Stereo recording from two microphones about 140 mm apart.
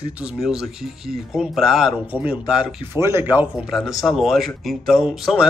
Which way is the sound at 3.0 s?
20° right (ahead or behind).